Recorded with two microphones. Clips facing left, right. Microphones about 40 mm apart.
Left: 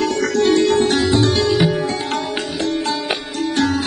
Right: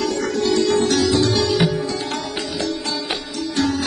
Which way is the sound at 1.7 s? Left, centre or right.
Left.